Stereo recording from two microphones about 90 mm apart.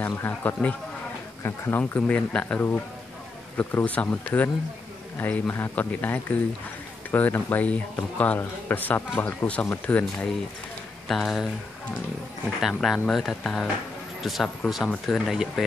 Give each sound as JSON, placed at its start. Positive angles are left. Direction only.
{"t": 0.0, "sound": "a man's voice", "side_deg": 20}
{"t": 11.1, "sound": "speech", "side_deg": 5}
{"t": 12.6, "sound": "speech", "side_deg": 0}